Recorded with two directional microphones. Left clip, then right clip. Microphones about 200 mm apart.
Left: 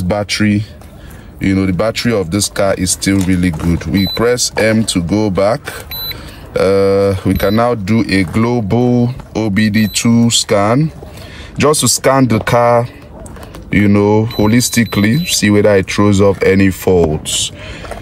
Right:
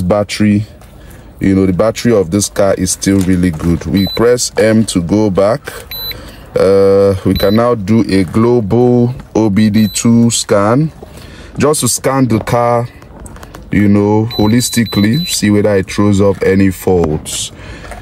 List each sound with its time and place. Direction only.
0.1 s speech: 5° right (ahead or behind)